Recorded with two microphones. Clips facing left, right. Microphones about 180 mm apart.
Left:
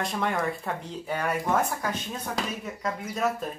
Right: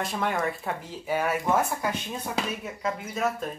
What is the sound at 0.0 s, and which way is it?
Speech, centre (ahead or behind).